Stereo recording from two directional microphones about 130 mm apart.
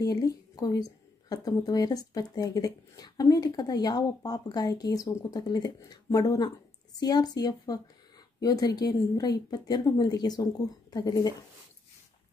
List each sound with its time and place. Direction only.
0.0 s a woman's voice: 30° left (ahead or behind)